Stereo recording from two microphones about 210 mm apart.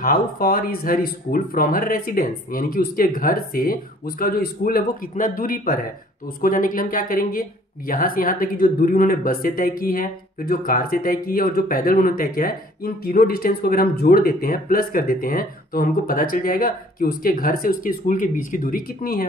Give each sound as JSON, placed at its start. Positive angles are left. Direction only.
{"t": 0.0, "sound": "speech", "side_deg": 45}